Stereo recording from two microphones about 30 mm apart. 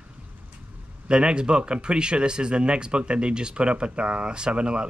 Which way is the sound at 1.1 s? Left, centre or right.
Right.